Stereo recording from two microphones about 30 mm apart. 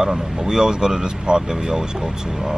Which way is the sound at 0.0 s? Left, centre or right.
Right.